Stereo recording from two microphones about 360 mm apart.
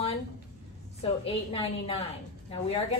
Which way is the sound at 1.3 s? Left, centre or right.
Centre.